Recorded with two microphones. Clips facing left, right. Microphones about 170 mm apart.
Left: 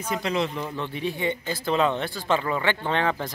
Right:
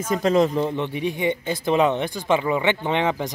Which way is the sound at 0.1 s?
45° right (ahead or behind).